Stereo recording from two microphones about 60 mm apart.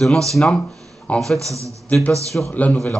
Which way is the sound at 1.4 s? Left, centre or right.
Right.